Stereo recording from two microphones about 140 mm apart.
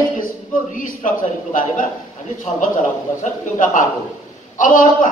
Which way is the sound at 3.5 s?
65° left (ahead or behind).